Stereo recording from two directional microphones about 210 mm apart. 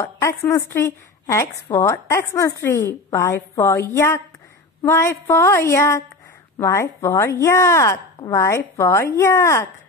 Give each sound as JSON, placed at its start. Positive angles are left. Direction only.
{"t": 0.0, "sound": "a woman's voice", "side_deg": 15}